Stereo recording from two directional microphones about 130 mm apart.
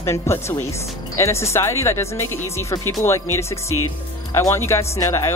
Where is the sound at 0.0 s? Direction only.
20° left (ahead or behind).